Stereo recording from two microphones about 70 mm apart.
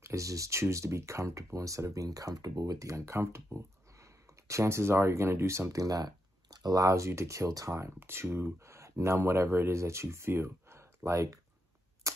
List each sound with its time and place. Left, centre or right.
0.0 s speech: right
8.0 s speech: right